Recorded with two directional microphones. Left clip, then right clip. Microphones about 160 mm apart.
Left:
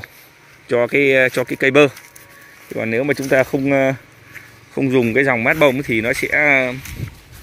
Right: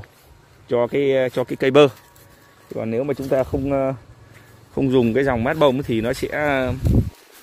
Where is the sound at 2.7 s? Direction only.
5° right (ahead or behind).